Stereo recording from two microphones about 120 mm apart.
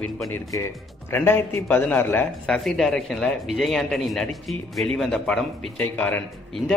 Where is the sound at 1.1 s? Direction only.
15° left (ahead or behind).